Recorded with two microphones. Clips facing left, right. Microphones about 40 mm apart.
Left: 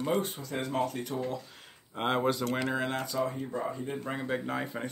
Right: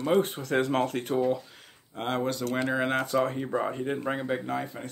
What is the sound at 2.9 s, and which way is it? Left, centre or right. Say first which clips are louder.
Speech: right 5 dB; right.